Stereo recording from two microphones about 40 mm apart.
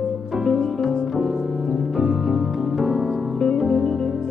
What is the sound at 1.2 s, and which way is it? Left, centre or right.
Music, centre.